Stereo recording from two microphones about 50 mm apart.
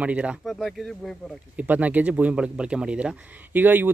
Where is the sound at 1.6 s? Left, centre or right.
Right.